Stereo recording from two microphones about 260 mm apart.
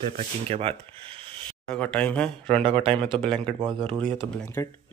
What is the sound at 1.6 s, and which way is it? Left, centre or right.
Speech, centre.